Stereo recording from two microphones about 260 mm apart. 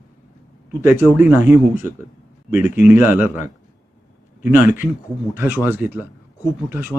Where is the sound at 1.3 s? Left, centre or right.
Centre.